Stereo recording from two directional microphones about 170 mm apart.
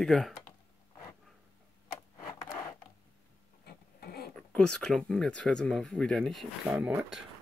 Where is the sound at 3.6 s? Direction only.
65° left (ahead or behind).